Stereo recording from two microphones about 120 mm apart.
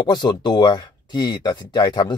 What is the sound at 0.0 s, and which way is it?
Speech, 40° left (ahead or behind).